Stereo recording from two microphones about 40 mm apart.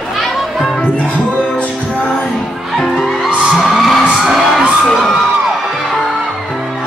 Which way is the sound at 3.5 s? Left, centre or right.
Centre.